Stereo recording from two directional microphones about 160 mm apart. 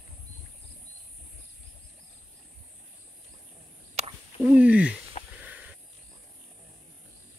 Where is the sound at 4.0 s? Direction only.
40° right (ahead or behind).